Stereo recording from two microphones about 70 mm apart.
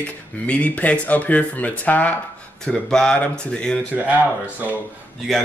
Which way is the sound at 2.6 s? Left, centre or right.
Centre.